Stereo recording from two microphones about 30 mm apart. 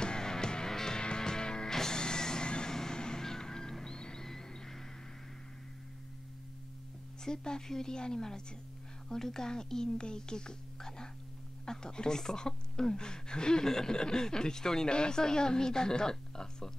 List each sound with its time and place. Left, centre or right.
0.0 s music: left
2.7 s music: centre
4.2 s a sound: centre
7.2 s a woman's voice: left
9.9 s a woman's voice: left